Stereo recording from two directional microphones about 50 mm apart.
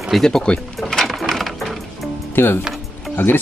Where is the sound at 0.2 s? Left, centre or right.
Centre.